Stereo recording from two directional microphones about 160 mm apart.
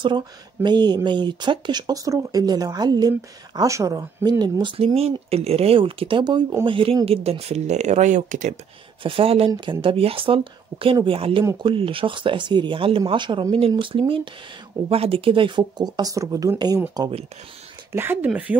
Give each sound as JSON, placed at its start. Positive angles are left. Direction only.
{"t": 0.0, "sound": "speech", "side_deg": -30}
{"t": 9.0, "sound": "speech", "side_deg": -35}
{"t": 17.9, "sound": "speech", "side_deg": -15}